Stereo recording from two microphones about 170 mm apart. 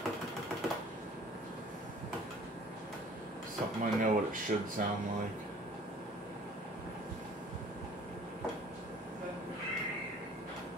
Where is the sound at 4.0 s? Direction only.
50° right (ahead or behind).